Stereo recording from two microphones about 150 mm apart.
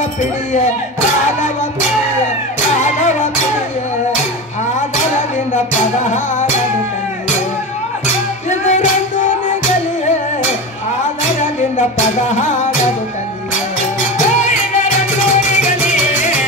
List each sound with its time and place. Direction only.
2.8 s music: 55° left (ahead or behind)
8.5 s music: 55° left (ahead or behind)
11.7 s music: 55° left (ahead or behind)
14.1 s music: 55° left (ahead or behind)